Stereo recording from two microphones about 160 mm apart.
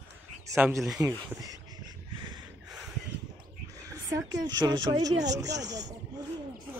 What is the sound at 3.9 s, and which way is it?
A woman's voice, 25° right (ahead or behind).